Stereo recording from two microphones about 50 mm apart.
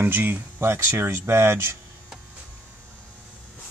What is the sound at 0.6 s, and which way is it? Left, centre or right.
Speech, right.